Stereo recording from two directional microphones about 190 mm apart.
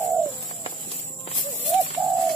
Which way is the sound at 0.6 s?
35° left (ahead or behind).